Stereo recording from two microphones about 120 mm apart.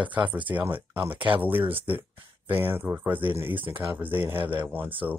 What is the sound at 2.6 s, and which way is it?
Speech, 20° right (ahead or behind).